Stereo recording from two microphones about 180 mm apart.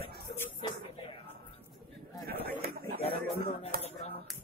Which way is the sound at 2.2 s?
60° right (ahead or behind).